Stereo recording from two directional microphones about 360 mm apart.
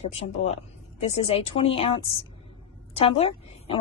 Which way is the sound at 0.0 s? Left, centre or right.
Centre.